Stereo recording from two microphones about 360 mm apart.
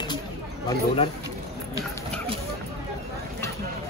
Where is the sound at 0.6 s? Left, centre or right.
Centre.